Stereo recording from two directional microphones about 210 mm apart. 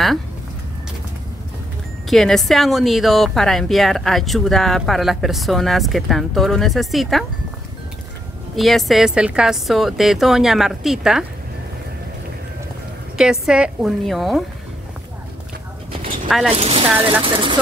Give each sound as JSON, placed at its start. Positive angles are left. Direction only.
{"t": 2.0, "sound": "speech", "side_deg": 0}
{"t": 8.5, "sound": "speech", "side_deg": 0}
{"t": 13.2, "sound": "speech", "side_deg": -5}
{"t": 16.3, "sound": "speech", "side_deg": 0}
{"t": 16.5, "sound": "speech", "side_deg": -30}